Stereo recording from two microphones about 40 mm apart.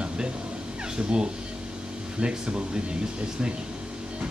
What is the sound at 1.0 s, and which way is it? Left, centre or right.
Speech, right.